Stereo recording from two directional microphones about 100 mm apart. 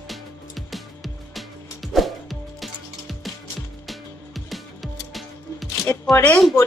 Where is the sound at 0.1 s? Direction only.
Centre (ahead or behind).